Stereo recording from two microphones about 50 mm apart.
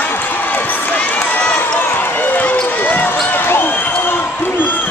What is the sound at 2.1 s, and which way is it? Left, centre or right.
Basketball bounce, left.